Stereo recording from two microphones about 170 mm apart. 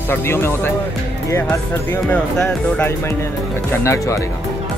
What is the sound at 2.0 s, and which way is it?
Speech, 5° left (ahead or behind).